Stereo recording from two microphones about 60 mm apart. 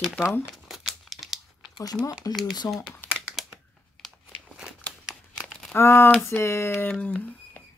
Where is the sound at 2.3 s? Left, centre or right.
Left.